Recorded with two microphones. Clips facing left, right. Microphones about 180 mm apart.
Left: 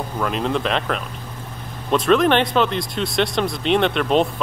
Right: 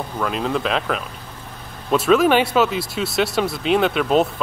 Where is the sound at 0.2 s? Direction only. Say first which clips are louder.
Even; centre (ahead or behind).